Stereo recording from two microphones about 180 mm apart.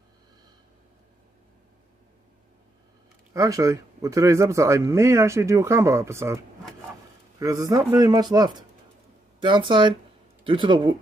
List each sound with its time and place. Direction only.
3.3 s a man's voice: 20° right (ahead or behind)